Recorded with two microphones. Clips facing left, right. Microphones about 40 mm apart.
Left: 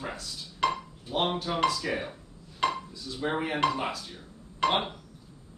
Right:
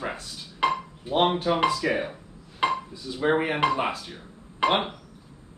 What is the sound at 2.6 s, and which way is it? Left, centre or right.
Dishes, right.